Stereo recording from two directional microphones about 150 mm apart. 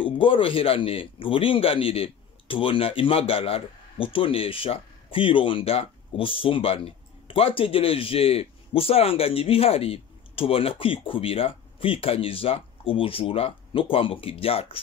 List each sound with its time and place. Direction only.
0.0 s a man's voice: 35° left (ahead or behind)